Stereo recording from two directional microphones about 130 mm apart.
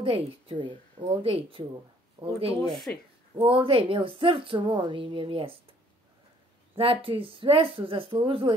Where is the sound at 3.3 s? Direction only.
40° right (ahead or behind).